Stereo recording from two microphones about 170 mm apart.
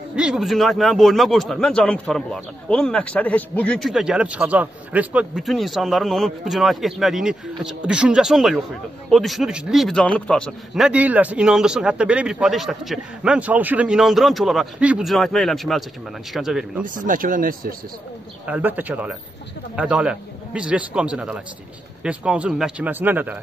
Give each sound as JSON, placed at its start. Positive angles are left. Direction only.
{"t": 0.1, "sound": "speech", "side_deg": -5}
{"t": 16.8, "sound": "speech", "side_deg": -50}
{"t": 18.5, "sound": "speech", "side_deg": -10}